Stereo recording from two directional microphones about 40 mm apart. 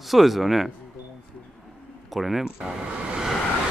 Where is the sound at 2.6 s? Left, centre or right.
Right.